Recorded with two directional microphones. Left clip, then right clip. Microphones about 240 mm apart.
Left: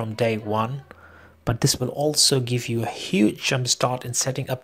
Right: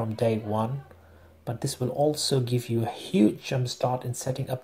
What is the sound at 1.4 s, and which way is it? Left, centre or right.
Speech, left.